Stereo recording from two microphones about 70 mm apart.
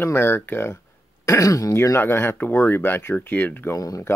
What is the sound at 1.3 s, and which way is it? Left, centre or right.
Speech, left.